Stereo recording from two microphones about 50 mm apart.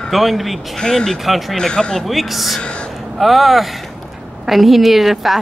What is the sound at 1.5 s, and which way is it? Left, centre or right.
Speech, centre.